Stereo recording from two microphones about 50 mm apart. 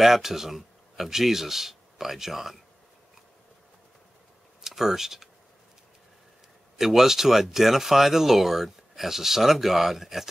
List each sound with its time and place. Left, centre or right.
0.0 s speech: centre
4.6 s speech: centre
6.8 s speech: centre